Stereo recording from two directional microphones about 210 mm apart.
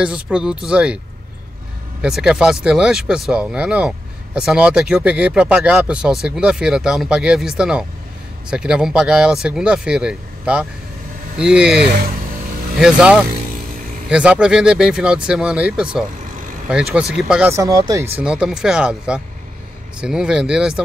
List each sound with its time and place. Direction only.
0.0 s speech: 5° right (ahead or behind)
2.0 s speech: centre (ahead or behind)
18.2 s speech: 5° right (ahead or behind)